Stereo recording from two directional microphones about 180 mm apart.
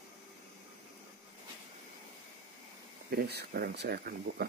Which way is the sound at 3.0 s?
60° right (ahead or behind).